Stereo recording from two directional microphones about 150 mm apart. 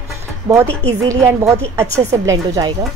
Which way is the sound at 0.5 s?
20° right (ahead or behind).